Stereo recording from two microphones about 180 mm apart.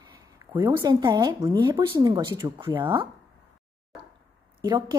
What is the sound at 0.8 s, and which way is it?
Speech, 25° right (ahead or behind).